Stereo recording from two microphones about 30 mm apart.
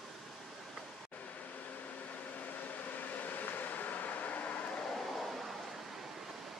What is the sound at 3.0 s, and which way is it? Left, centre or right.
Vehicle, left.